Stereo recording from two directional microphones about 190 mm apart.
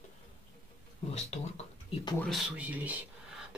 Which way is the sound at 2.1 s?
Centre (ahead or behind).